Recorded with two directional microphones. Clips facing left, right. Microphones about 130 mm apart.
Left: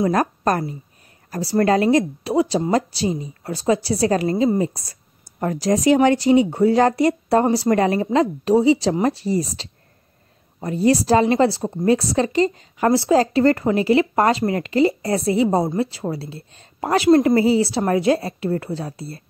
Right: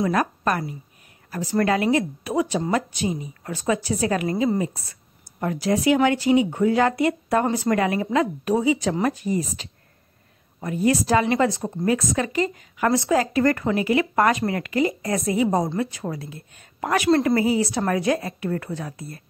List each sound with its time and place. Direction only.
0.0 s a woman's voice: 35° left (ahead or behind); by 11.9 s 20° left (ahead or behind)
11.9 s a woman's voice: 35° left (ahead or behind)